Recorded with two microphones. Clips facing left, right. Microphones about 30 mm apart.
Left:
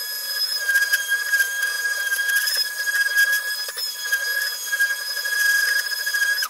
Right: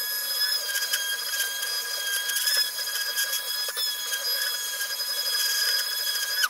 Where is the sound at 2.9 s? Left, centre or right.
Centre.